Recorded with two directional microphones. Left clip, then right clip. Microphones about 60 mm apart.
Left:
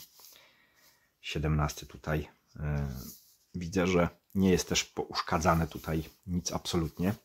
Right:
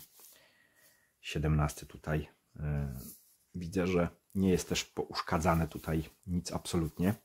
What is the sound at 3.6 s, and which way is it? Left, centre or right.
Speech, left.